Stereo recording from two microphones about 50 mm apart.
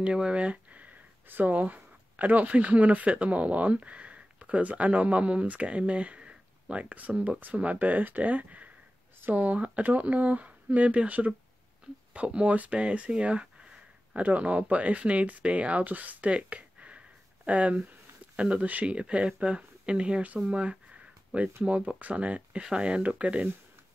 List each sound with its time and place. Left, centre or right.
0.0 s speech: right
20.3 s a sound: right
21.6 s speech: right